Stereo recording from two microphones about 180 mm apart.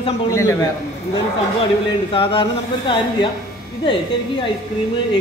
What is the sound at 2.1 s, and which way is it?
Speech, 30° left (ahead or behind).